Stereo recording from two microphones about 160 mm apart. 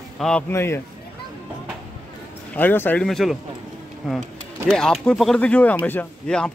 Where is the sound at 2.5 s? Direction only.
10° left (ahead or behind).